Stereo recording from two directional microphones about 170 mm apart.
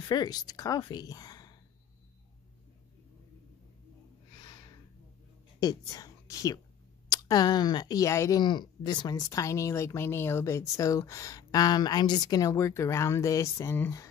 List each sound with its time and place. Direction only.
0.1 s a woman's voice: 25° left (ahead or behind)
4.4 s a sound: 25° left (ahead or behind)
5.6 s a woman's voice: 20° left (ahead or behind)